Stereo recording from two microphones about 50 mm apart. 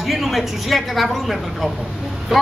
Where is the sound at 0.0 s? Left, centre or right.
Centre.